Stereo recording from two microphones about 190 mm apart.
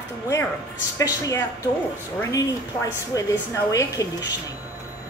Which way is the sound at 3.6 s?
20° left (ahead or behind).